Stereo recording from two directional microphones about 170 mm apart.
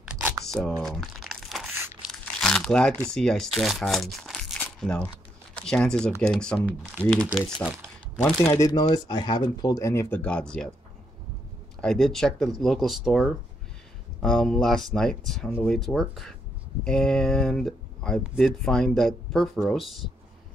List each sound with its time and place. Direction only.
0.0 s a sound: 10° right (ahead or behind)
0.5 s speech: centre (ahead or behind)
0.8 s crumpling: centre (ahead or behind)
2.4 s speech: 5° left (ahead or behind)
8.5 s speech: 20° left (ahead or behind)
11.8 s speech: centre (ahead or behind)